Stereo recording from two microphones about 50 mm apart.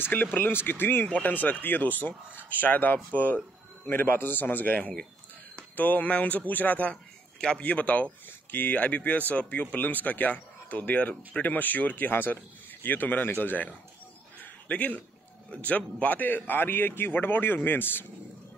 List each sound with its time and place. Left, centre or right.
0.0 s speech: left
7.3 s speech: centre
8.3 s speech: left
14.4 s a sound: left
15.6 s speech: left